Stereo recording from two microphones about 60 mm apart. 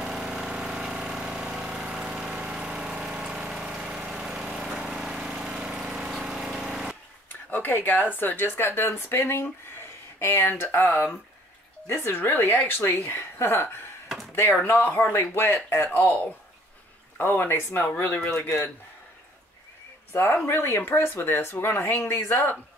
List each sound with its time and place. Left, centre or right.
0.0 s engine: centre
4.0 s vehicle: centre
7.2 s speech: left
11.9 s speech: left
14.0 s a sound: centre
14.3 s speech: left
14.6 s speech: left
15.9 s speech: left
17.2 s speech: left
20.1 s speech: left